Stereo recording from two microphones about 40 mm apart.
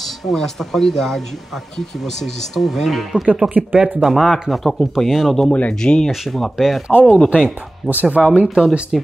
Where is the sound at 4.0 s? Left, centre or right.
Centre.